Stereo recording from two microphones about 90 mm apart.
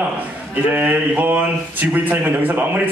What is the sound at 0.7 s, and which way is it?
A man's voice, 20° right (ahead or behind).